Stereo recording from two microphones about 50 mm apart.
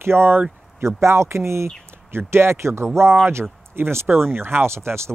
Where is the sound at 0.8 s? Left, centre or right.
Right.